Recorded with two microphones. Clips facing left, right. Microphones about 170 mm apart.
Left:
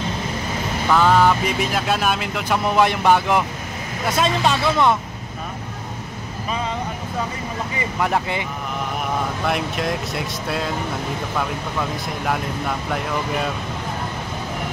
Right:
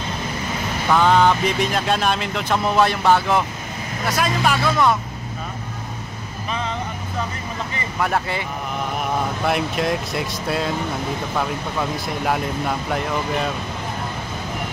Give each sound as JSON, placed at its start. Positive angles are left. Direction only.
{"t": 0.8, "sound": "speech", "side_deg": 0}
{"t": 4.0, "sound": "speech", "side_deg": 25}
{"t": 8.0, "sound": "speech", "side_deg": 15}
{"t": 9.5, "sound": "speech", "side_deg": 0}